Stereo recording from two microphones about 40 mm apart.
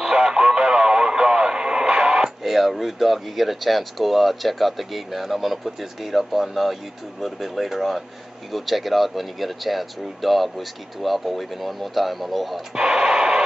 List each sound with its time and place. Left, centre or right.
0.0 s radio: centre
2.4 s speech: centre
12.7 s radio: centre